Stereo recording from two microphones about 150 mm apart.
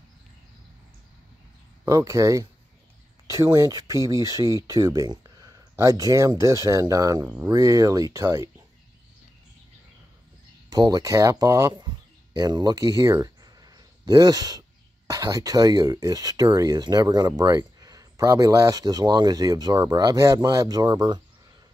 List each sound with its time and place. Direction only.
1.9 s speech: 20° right (ahead or behind)
10.7 s speech: 25° right (ahead or behind)